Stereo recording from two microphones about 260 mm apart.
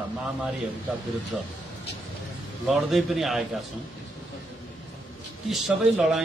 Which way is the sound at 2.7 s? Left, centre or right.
Centre.